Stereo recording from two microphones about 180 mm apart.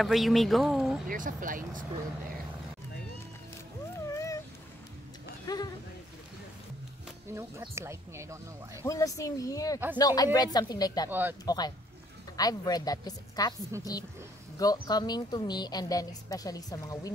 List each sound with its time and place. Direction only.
0.0 s speech: centre (ahead or behind)
1.0 s speech: 50° right (ahead or behind)
4.1 s a sound: 20° left (ahead or behind)
5.5 s a sound: 20° left (ahead or behind)
7.7 s speech: 15° right (ahead or behind)
8.8 s a woman's voice: 20° left (ahead or behind)
11.1 s speech: 10° right (ahead or behind)
11.4 s a woman's voice: 20° left (ahead or behind)